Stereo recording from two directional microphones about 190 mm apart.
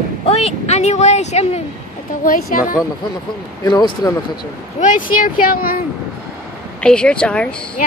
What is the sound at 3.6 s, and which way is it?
Speech, 20° left (ahead or behind).